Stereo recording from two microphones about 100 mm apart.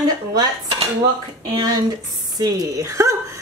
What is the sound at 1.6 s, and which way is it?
Speech, 40° right (ahead or behind).